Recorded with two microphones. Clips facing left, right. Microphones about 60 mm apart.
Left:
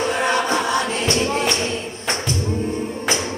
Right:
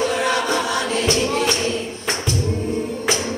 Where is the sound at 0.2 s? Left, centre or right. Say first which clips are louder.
Left 1 dB; left.